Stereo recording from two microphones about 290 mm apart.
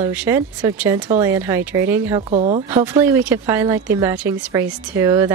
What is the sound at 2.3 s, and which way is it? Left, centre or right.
Speech, right.